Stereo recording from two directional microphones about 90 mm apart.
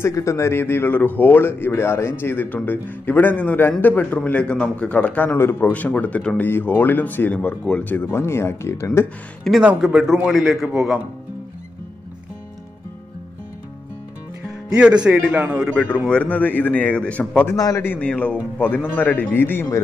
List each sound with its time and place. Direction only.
0.1 s a man's voice: 35° left (ahead or behind); by 7.9 s 10° left (ahead or behind)
7.9 s a man's voice: 25° left (ahead or behind)
9.6 s a man's voice: 10° right (ahead or behind)
14.7 s a man's voice: 10° right (ahead or behind)
16.1 s a man's voice: 15° left (ahead or behind)
17.6 s a man's voice: 40° left (ahead or behind)
17.8 s a man's voice: 15° left (ahead or behind)